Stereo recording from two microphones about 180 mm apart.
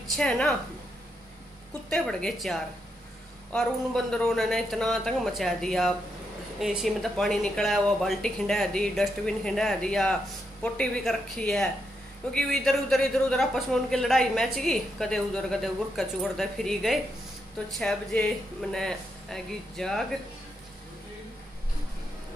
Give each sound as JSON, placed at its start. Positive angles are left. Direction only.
{"t": 0.2, "sound": "a man's voice", "side_deg": 5}
{"t": 1.9, "sound": "a man's voice", "side_deg": 5}